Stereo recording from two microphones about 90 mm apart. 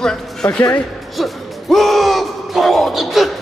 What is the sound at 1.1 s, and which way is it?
Speech, centre (ahead or behind).